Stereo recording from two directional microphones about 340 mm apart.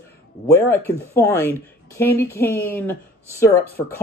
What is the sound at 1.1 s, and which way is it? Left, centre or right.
Speech, centre.